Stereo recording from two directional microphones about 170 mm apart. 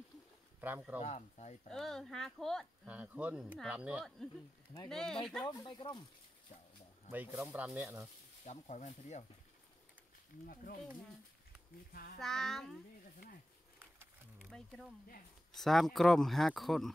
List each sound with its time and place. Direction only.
0.6 s speech: 10° right (ahead or behind)
1.0 s speech: 40° left (ahead or behind)
1.7 s speech: centre (ahead or behind)
4.8 s speech: 5° left (ahead or behind)
5.4 s speech: 25° left (ahead or behind)
7.1 s speech: 10° right (ahead or behind)
8.5 s speech: 45° left (ahead or behind)
10.4 s speech: 60° left (ahead or behind)
12.2 s speech: centre (ahead or behind)
14.4 s speech: centre (ahead or behind)